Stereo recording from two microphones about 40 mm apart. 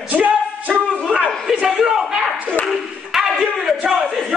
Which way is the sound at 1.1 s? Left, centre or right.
Right.